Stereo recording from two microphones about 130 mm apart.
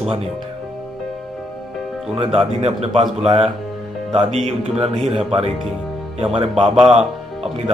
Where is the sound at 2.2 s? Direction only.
45° right (ahead or behind).